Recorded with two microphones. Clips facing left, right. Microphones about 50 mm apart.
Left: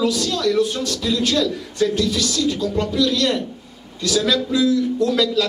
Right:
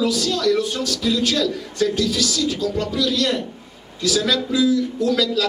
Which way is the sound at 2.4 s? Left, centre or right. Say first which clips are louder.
Left 1 dB; left.